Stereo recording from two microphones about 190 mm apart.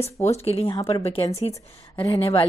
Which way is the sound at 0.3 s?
30° left (ahead or behind).